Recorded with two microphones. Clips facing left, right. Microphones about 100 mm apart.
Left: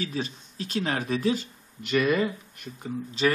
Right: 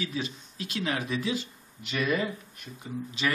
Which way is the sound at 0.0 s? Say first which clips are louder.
Left 2 dB; 40° left (ahead or behind).